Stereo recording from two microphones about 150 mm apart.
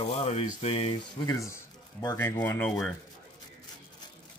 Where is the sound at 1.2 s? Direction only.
20° left (ahead or behind).